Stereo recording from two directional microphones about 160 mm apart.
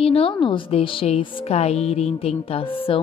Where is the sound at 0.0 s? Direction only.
35° left (ahead or behind).